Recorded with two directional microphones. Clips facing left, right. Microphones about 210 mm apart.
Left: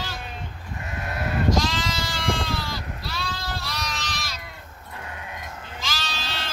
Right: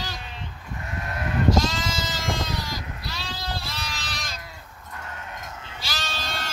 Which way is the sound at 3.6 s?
30° right (ahead or behind).